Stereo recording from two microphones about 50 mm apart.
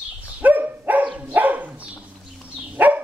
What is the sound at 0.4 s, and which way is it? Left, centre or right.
Dog, right.